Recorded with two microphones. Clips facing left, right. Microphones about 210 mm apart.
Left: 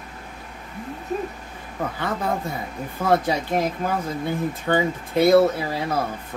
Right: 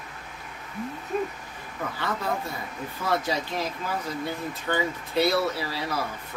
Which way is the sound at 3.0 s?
55° left (ahead or behind).